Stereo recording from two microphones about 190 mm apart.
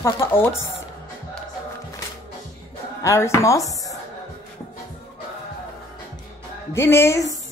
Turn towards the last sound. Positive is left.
turn(degrees=15)  # may be behind; listen again after turning